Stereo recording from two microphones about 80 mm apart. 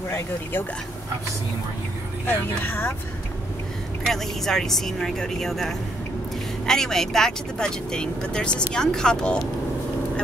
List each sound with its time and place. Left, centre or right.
0.1 s speech: left
2.2 s speech: left
4.0 s speech: centre